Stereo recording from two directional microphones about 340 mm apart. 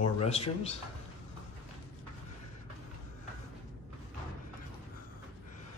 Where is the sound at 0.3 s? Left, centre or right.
Centre.